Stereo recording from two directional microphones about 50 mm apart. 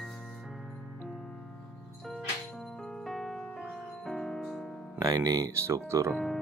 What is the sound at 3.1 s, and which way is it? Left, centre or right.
Music, centre.